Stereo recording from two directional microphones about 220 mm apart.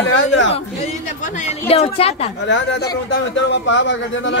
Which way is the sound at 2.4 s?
55° left (ahead or behind).